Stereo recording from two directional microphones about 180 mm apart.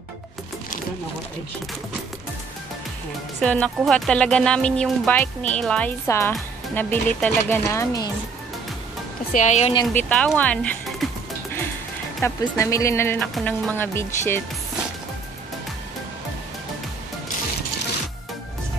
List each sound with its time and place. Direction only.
3.3 s speech: 5° left (ahead or behind)
9.3 s a woman's voice: 40° left (ahead or behind)
9.9 s speech: 5° left (ahead or behind)
12.2 s speech: 15° left (ahead or behind)